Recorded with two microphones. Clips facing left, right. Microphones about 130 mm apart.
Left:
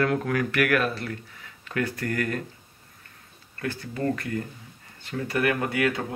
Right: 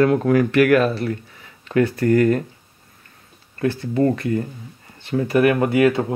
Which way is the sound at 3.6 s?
25° right (ahead or behind).